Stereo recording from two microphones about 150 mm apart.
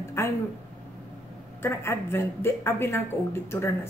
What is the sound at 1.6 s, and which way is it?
A woman's voice, 15° left (ahead or behind).